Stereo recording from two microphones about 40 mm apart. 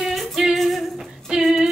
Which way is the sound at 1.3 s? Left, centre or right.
Centre.